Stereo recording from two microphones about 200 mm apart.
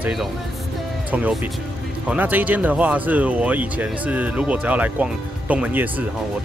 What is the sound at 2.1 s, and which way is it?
Speech, 10° right (ahead or behind).